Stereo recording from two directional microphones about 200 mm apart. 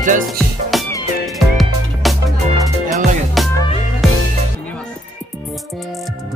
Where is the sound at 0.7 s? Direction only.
Centre (ahead or behind).